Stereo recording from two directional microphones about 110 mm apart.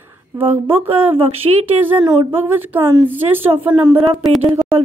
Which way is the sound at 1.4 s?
50° right (ahead or behind).